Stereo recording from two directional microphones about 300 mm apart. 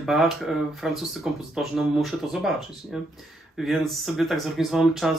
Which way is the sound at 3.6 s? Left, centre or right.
Centre.